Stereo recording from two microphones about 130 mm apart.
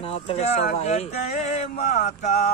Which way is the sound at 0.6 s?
75° left (ahead or behind).